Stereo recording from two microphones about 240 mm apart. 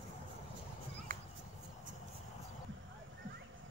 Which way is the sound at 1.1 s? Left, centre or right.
Right.